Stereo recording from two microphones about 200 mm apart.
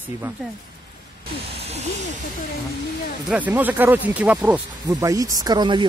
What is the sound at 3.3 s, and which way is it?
Speech, 10° right (ahead or behind).